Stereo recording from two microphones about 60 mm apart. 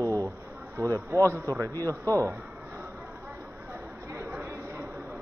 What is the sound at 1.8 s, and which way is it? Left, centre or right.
Speech, right.